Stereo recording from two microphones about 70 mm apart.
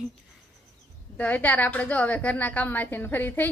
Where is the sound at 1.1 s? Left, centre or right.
Left.